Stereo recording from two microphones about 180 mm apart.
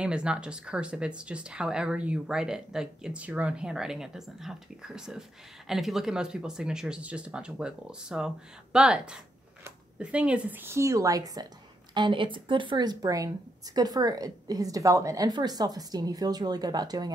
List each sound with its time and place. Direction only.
0.0 s a woman's voice: 5° right (ahead or behind); by 17.1 s 20° right (ahead or behind)